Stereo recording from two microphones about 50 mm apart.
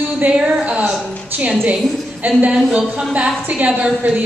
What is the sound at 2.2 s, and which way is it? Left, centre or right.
Speech, right.